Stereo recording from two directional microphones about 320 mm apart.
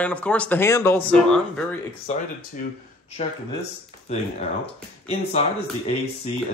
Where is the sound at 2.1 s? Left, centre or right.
Centre.